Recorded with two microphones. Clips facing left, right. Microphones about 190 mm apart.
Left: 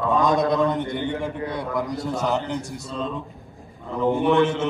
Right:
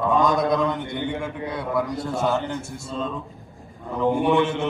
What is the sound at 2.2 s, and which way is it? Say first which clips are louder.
Speech: right 1 dB; 20° left (ahead or behind).